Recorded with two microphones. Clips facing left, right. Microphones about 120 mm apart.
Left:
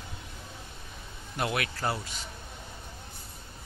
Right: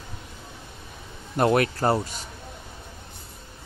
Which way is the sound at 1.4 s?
45° right (ahead or behind).